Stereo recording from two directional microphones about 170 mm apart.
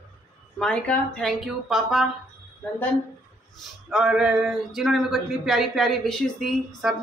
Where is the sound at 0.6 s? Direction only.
5° left (ahead or behind).